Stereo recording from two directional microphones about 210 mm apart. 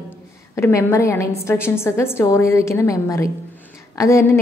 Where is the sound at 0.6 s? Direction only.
10° left (ahead or behind).